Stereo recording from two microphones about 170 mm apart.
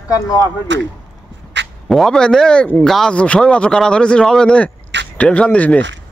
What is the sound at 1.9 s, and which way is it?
A man's voice, centre (ahead or behind).